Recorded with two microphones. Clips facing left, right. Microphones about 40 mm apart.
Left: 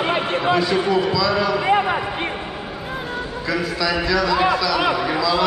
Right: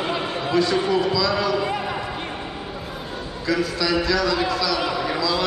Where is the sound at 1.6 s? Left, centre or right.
Left.